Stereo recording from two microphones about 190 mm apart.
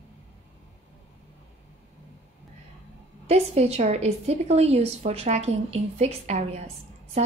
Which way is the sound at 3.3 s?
35° right (ahead or behind).